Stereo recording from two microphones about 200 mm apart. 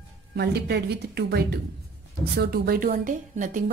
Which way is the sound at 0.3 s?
55° right (ahead or behind).